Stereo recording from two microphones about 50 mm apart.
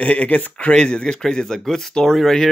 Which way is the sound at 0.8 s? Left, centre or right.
Centre.